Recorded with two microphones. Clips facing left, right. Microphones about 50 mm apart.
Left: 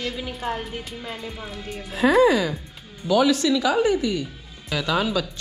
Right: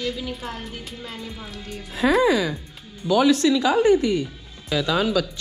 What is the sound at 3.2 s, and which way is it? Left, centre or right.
Speech, right.